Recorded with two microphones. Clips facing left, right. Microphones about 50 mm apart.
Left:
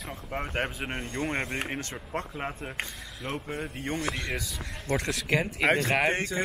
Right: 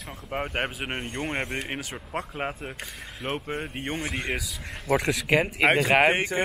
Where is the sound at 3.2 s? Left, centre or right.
Right.